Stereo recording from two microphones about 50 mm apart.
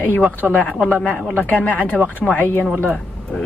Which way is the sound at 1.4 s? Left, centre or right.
Left.